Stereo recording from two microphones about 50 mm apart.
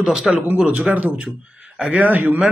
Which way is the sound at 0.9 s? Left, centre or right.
Right.